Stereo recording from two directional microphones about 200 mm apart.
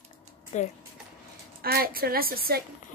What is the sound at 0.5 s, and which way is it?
Speech, 35° left (ahead or behind).